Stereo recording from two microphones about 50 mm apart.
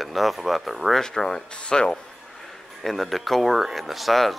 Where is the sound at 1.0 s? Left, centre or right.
Centre.